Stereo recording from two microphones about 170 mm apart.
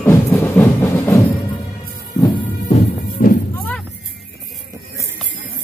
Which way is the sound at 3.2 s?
50° left (ahead or behind).